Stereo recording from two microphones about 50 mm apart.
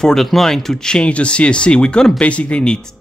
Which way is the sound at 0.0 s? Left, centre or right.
Centre.